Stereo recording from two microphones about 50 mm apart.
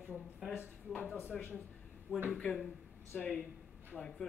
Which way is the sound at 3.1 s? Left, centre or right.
Left.